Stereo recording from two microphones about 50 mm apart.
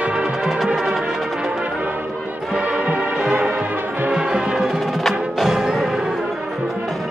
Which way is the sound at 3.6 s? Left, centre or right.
Right.